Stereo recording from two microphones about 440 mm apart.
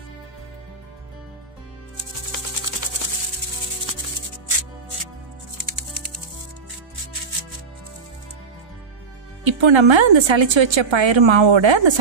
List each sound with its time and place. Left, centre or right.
9.4 s speech: right